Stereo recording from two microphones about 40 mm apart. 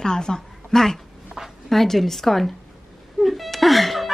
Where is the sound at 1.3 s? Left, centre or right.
Centre.